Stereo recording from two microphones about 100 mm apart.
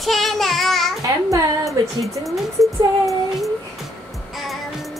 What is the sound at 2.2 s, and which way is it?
Speech, centre (ahead or behind).